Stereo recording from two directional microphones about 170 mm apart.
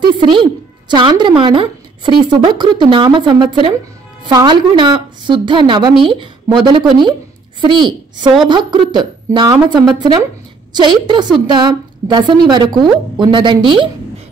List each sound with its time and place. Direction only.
0.0 s music: 30° right (ahead or behind)
0.8 s speech: 25° right (ahead or behind)